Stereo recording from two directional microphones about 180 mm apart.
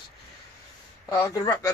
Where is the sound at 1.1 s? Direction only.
15° left (ahead or behind).